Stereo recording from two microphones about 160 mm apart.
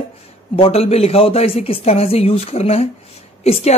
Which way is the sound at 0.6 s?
40° left (ahead or behind).